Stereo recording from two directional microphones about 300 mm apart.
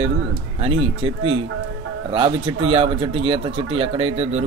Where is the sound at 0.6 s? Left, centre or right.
Centre.